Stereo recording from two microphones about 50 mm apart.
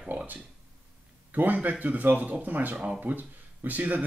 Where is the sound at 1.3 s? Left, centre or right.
Right.